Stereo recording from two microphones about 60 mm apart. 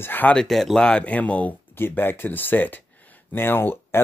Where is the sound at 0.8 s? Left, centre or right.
Left.